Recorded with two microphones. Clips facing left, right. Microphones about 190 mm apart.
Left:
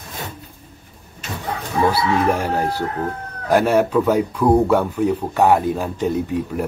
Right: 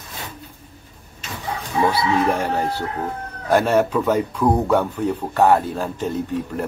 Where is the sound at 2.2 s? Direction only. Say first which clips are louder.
Left 1 dB; 10° left (ahead or behind).